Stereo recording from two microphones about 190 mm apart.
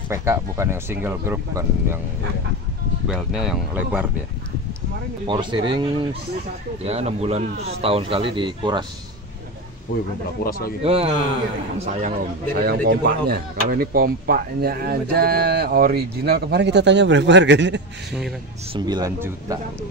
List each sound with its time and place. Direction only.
0.1 s speech: 15° right (ahead or behind)
3.1 s speech: centre (ahead or behind)
5.2 s speech: 25° right (ahead or behind)
10.4 s speech: 55° left (ahead or behind)
10.8 s speech: 30° right (ahead or behind)
12.5 s speech: 55° right (ahead or behind)
18.7 s speech: 20° right (ahead or behind)